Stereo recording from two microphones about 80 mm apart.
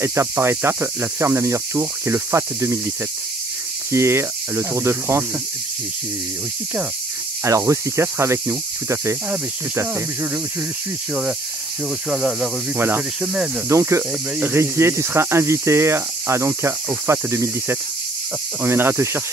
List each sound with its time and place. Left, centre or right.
0.0 s speech: right
3.9 s speech: right
7.4 s speech: right
12.1 s speech: centre
12.7 s speech: right